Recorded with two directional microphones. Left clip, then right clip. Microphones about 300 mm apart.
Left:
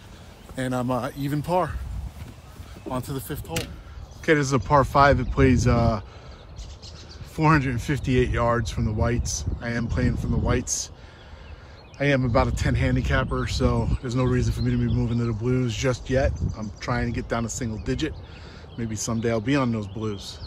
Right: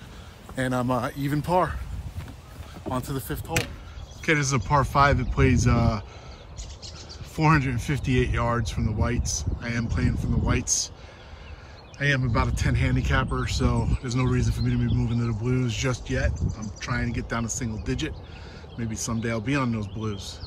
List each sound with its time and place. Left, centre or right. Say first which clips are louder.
0.6 s speech: right 1 dB; centre
2.9 s speech: even; centre
7.3 s speech: left 1 dB; centre
12.0 s speech: left 4 dB; centre